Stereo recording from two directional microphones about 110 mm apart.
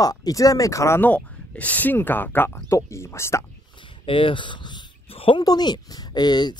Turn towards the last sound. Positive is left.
turn(degrees=40)  # may be behind; listen again after turning